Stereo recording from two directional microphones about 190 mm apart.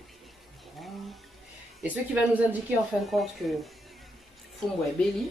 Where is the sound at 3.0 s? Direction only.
Centre (ahead or behind).